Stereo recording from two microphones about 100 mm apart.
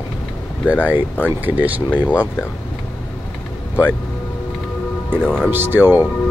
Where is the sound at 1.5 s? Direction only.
15° right (ahead or behind).